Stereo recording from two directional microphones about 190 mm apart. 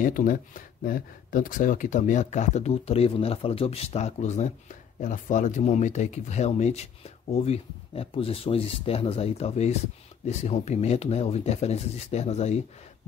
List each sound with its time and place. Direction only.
0.0 s speech: 45° left (ahead or behind)